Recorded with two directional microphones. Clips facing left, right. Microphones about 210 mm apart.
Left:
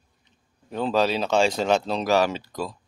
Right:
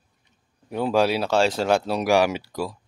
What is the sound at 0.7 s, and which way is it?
Speech, 10° right (ahead or behind).